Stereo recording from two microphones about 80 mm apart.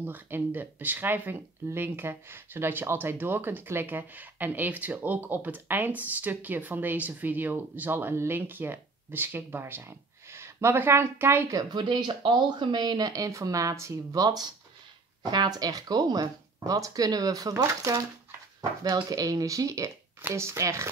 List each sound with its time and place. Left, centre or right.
0.0 s speech: right
11.7 s speech: right
13.1 s speech: right